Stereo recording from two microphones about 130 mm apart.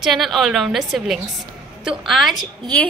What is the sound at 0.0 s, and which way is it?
A woman's voice, centre (ahead or behind).